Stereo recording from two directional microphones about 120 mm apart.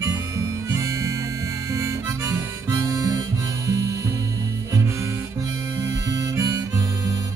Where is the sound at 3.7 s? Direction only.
30° right (ahead or behind).